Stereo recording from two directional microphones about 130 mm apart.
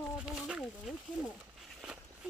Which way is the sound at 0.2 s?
5° right (ahead or behind).